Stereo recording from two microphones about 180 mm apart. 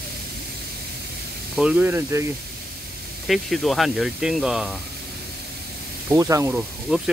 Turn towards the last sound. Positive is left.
turn(degrees=5)  # may be behind; listen again after turning